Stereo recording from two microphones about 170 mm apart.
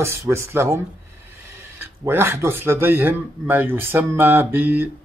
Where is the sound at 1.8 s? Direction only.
15° right (ahead or behind).